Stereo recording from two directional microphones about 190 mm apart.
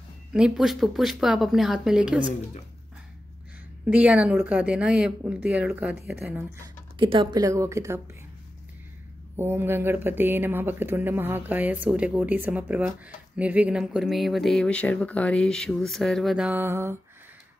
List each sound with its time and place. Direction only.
0.3 s speech: 5° right (ahead or behind)
3.8 s speech: 5° right (ahead or behind)
7.0 s speech: 25° right (ahead or behind)
9.4 s speech: 10° right (ahead or behind)